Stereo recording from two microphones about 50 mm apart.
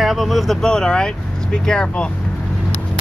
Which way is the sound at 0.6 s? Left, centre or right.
Centre.